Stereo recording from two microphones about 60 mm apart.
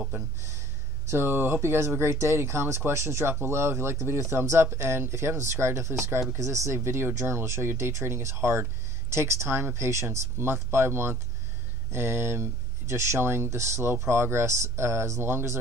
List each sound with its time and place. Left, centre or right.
1.0 s speech: right
9.6 s speech: right
9.8 s speech: right